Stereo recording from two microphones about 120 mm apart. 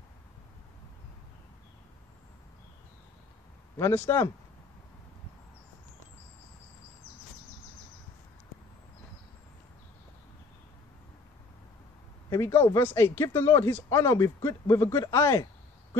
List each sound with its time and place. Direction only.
3.7 s speech: 20° left (ahead or behind)
12.3 s speech: 20° left (ahead or behind)